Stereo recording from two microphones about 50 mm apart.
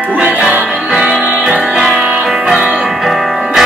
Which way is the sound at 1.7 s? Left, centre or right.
Centre.